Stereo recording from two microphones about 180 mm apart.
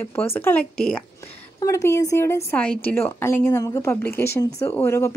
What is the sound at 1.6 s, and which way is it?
Speech, 15° left (ahead or behind).